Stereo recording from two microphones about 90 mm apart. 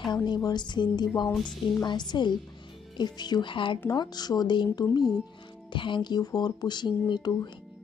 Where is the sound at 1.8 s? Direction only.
55° left (ahead or behind).